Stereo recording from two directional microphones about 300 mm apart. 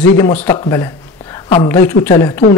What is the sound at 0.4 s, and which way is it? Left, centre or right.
Speech, centre.